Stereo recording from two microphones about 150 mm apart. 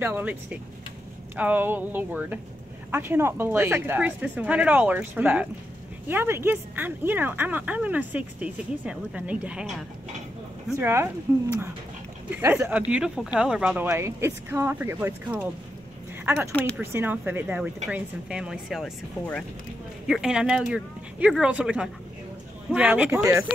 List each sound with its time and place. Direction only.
0.0 s speech: 10° right (ahead or behind)
10.8 s speech: 15° right (ahead or behind)
12.3 s speech: 15° right (ahead or behind)
13.8 s speech: 15° right (ahead or behind); by 18.9 s centre (ahead or behind)
20.1 s speech: 5° right (ahead or behind)